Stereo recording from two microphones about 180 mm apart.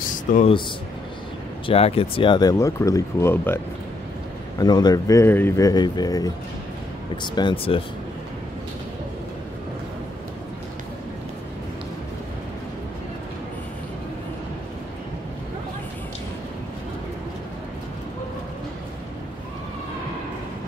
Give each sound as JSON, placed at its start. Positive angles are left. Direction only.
{"t": 0.3, "sound": "speech", "side_deg": 50}
{"t": 1.7, "sound": "speech", "side_deg": 30}